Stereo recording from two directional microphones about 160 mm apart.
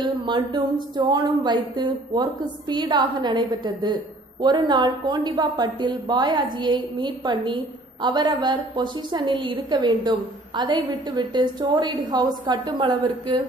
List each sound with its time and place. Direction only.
0.0 s a woman's voice: 25° right (ahead or behind)